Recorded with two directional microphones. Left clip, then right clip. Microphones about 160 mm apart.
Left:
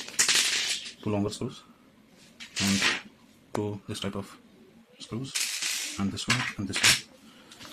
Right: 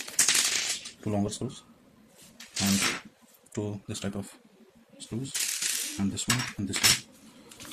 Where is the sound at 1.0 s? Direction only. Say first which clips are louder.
Left 1 dB; 20° left (ahead or behind).